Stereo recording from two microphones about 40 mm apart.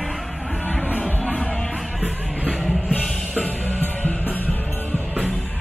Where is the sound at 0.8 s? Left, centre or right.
Left.